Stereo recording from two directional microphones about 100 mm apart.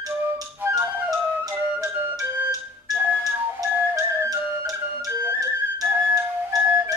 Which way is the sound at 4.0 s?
30° right (ahead or behind).